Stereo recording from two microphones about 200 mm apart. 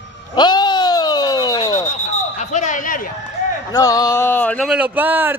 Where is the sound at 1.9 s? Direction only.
35° left (ahead or behind).